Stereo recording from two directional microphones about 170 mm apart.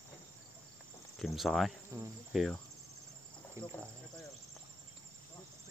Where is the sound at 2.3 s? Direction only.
Centre (ahead or behind).